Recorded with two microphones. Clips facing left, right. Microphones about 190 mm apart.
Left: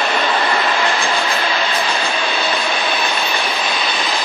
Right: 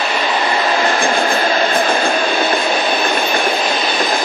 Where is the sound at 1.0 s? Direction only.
50° right (ahead or behind).